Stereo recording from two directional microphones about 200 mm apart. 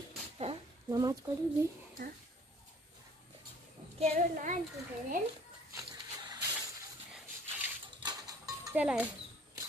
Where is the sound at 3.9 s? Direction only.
35° right (ahead or behind).